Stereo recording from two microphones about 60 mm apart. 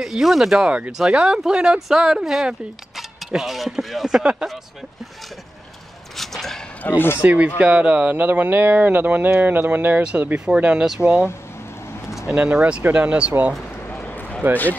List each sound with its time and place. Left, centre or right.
0.0 s speech: centre
0.7 s speech: right; by 4.2 s centre
4.2 s speech: centre
6.1 s a sound: centre
6.9 s speech: left
7.2 s speech: centre
10.3 s speech: centre
14.0 s a sound: left